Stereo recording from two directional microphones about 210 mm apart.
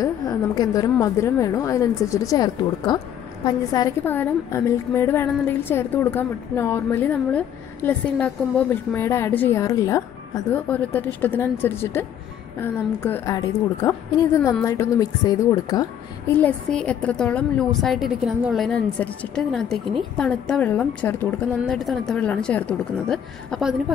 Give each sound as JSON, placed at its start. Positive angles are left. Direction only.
{"t": 0.0, "sound": "a woman's voice", "side_deg": 15}
{"t": 16.3, "sound": "a woman's voice", "side_deg": 5}